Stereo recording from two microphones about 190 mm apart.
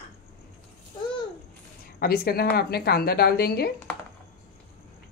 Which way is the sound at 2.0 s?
55° left (ahead or behind).